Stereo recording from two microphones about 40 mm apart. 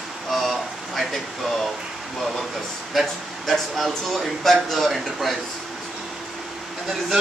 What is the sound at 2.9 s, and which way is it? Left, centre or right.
A man's voice, centre.